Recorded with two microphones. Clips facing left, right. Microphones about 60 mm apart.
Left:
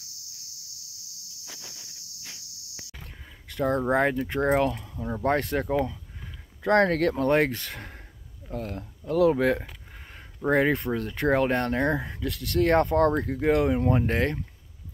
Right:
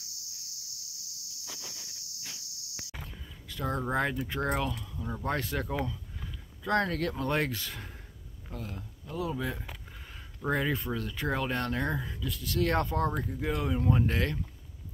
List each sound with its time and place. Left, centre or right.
3.4 s speech: left
9.1 s speech: left
10.5 s speech: left
12.2 s speech: left
12.5 s speech: left
13.2 s speech: left
13.7 s speech: left